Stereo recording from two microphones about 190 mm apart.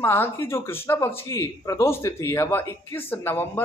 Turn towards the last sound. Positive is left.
turn(degrees=10)  # may be behind; listen again after turning